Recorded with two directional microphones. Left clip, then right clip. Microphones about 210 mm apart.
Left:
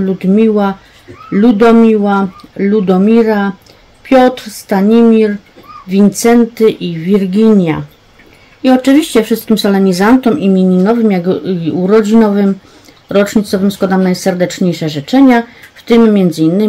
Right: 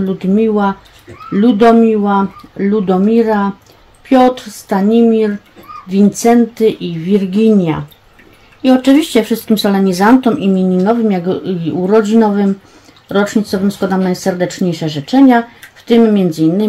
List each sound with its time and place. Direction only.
0.2 s speech: 20° left (ahead or behind)